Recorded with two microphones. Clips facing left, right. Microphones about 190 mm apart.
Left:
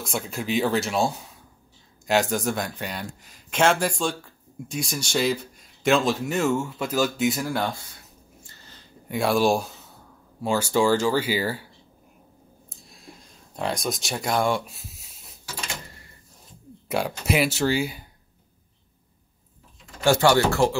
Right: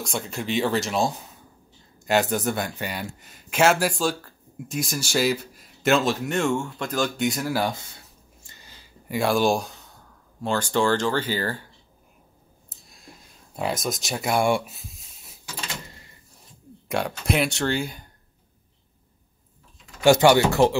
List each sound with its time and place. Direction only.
0.0 s a man's voice: centre (ahead or behind)
8.5 s a sound: 10° right (ahead or behind)
9.1 s speech: centre (ahead or behind)
12.6 s a sound: centre (ahead or behind)
13.6 s a man's voice: 5° right (ahead or behind)
14.7 s speech: centre (ahead or behind)
16.8 s a man's voice: 5° left (ahead or behind)
20.0 s speech: 15° right (ahead or behind)